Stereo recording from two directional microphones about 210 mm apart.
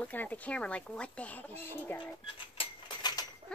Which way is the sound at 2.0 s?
25° left (ahead or behind).